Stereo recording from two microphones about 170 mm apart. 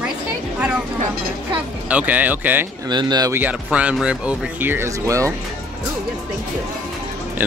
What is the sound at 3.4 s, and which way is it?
Speech, 5° right (ahead or behind).